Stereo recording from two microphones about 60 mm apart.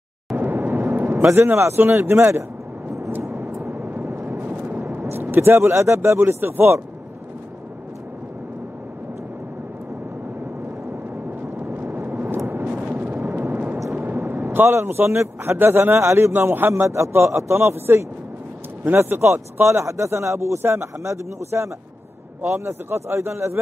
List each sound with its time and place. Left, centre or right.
0.4 s vehicle: right
1.3 s speech: right
3.1 s vehicle: right
3.7 s vehicle: right
5.2 s speech: right
11.7 s vehicle: right
13.3 s a sound: right
14.7 s speech: right